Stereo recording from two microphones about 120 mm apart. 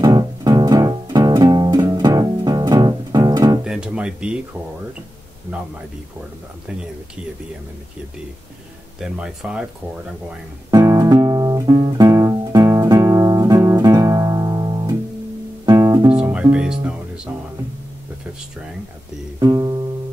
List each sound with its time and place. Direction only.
0.0 s music: 35° right (ahead or behind)
3.6 s guitar: 5° right (ahead or behind)
9.0 s speech: 5° right (ahead or behind)
10.7 s guitar: 25° right (ahead or behind)
15.6 s music: 30° right (ahead or behind)
16.2 s music: 10° right (ahead or behind)
19.4 s music: 30° right (ahead or behind)